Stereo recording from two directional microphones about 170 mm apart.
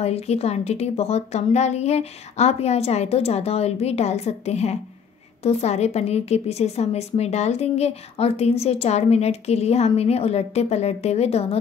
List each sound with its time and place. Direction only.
0.0 s a woman's voice: 40° left (ahead or behind)